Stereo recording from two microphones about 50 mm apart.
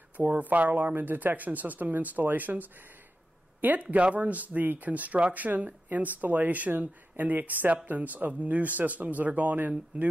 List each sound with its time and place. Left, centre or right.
0.2 s speech: right
3.8 s speech: right